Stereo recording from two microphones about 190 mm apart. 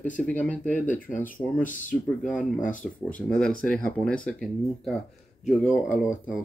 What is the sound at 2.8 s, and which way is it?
Speech, 5° left (ahead or behind).